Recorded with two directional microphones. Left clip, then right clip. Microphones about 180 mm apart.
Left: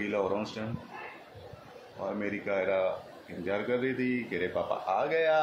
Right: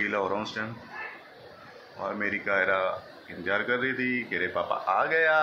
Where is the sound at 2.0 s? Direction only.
15° left (ahead or behind).